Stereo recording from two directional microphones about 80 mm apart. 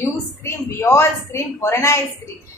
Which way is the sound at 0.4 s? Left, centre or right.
Left.